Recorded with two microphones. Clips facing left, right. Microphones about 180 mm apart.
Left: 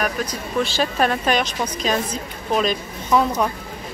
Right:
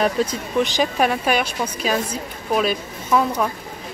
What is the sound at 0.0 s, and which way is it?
Speech, 25° right (ahead or behind).